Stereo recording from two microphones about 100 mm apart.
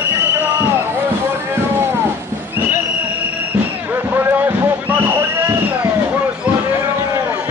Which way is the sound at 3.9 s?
20° right (ahead or behind).